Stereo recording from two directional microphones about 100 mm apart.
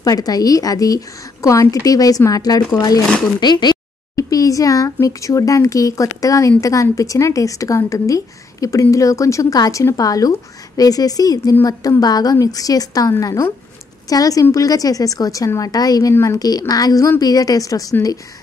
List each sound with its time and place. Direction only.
0.0 s a woman's voice: 40° left (ahead or behind)
4.1 s a sound: 35° left (ahead or behind)
5.0 s a woman's voice: 35° left (ahead or behind)